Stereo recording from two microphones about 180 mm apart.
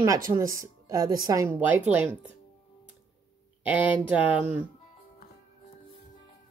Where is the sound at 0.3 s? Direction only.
15° right (ahead or behind).